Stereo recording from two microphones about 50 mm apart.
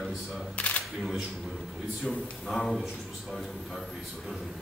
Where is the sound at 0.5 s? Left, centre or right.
Left.